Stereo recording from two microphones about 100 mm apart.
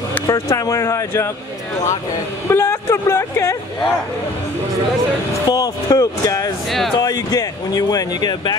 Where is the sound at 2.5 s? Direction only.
25° left (ahead or behind).